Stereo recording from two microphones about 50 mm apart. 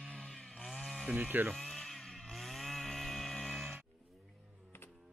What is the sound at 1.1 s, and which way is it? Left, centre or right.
Speech, right.